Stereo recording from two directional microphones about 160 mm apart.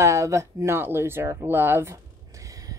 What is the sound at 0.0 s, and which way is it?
A woman's voice, 20° right (ahead or behind).